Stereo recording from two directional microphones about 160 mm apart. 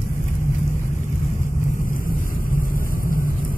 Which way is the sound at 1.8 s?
60° left (ahead or behind).